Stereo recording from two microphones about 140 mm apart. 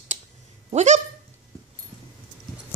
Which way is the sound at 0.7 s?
55° right (ahead or behind).